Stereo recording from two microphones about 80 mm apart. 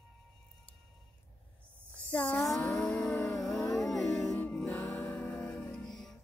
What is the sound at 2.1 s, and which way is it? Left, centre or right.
Speech, centre.